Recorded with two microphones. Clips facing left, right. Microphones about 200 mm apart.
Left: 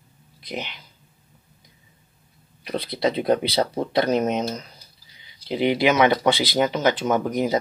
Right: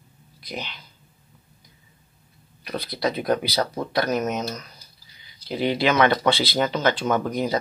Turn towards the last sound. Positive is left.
turn(degrees=20)  # may be behind; listen again after turning